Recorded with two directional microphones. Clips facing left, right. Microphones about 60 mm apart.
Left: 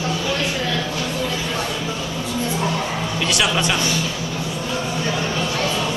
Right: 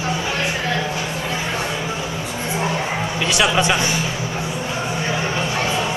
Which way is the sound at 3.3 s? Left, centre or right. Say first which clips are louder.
Right 3 dB; centre.